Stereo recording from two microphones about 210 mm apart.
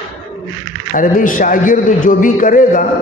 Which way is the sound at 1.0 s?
40° left (ahead or behind).